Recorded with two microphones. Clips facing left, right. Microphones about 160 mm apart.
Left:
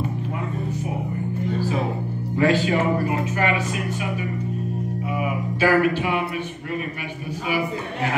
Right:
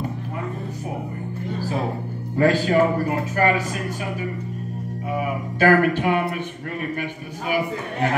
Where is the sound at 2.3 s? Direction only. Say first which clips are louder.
Right 2 dB; 45° right (ahead or behind).